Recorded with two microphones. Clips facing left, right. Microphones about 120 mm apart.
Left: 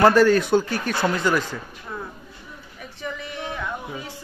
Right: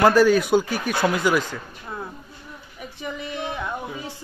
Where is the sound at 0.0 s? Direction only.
5° right (ahead or behind).